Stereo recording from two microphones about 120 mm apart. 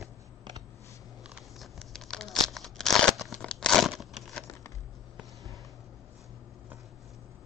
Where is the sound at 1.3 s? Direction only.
Centre (ahead or behind).